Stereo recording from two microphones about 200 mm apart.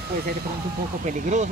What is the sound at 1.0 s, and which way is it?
Speech, 40° right (ahead or behind).